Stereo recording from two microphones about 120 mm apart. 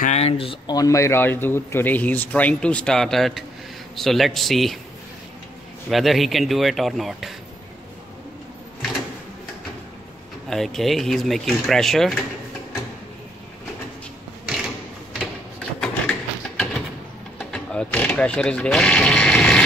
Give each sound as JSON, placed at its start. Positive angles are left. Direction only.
{"t": 0.0, "sound": "speech", "side_deg": 65}
{"t": 0.7, "sound": "a man's voice", "side_deg": 30}
{"t": 5.9, "sound": "speech", "side_deg": 0}
{"t": 10.5, "sound": "speech", "side_deg": 5}
{"t": 15.8, "sound": "a sound", "side_deg": 5}
{"t": 17.4, "sound": "sheep", "side_deg": 5}